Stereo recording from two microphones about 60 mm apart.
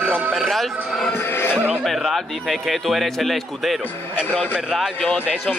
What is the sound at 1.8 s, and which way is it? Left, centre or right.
A man's voice, centre.